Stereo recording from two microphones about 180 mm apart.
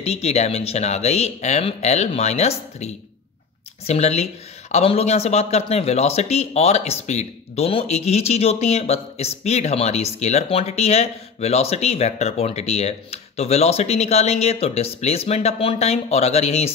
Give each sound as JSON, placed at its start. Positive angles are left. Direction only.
{"t": 0.0, "sound": "speech", "side_deg": 35}